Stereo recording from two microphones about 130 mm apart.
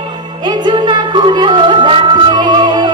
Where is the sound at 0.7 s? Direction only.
35° right (ahead or behind).